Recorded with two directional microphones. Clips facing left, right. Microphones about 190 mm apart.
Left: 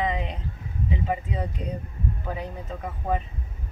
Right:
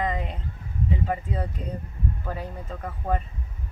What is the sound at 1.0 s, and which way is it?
Speech, 10° left (ahead or behind).